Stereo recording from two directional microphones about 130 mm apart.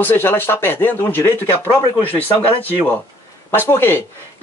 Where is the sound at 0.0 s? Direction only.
15° left (ahead or behind).